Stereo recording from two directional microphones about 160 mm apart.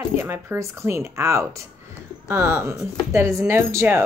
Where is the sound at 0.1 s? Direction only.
15° right (ahead or behind).